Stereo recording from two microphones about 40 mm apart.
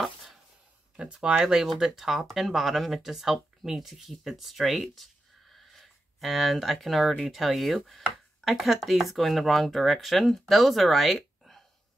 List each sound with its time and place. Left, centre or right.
0.9 s speech: right
1.6 s speech: centre